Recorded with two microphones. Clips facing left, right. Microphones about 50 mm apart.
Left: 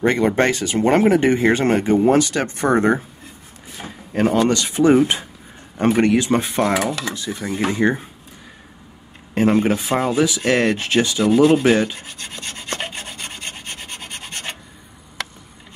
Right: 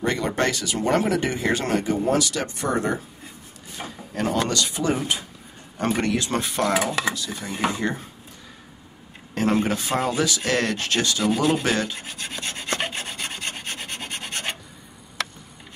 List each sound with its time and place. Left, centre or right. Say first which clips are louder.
0.0 s speech: left 6 dB; left
4.1 s speech: left 7 dB; left
5.8 s speech: left 7 dB; left
9.6 s speech: left 5 dB; centre
12.2 s filing: right 3 dB; right
12.9 s filing: right 1 dB; centre
13.7 s filing: right 1 dB; right